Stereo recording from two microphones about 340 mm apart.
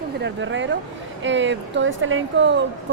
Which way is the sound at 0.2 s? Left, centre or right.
Right.